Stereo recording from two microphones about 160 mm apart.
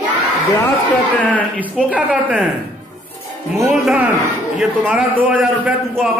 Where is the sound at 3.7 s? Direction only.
Centre (ahead or behind).